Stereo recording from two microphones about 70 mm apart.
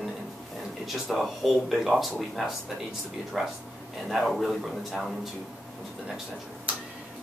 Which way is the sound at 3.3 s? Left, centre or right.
Centre.